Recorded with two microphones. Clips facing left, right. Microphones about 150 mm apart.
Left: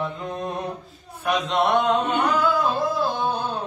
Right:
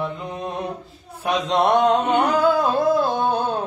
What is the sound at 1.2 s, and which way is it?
Speech, 30° right (ahead or behind).